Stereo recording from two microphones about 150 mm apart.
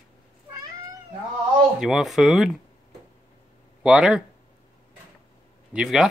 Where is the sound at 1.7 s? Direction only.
5° right (ahead or behind).